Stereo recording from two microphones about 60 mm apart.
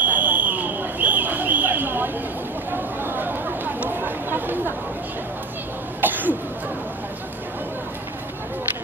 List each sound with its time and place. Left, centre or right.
0.0 s a sound: right
2.7 s chatter: right
5.9 s cough: right